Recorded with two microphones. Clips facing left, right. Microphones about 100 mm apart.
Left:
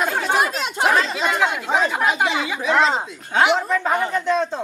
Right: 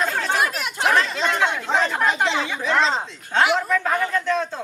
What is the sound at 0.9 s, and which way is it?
Speech, 5° left (ahead or behind).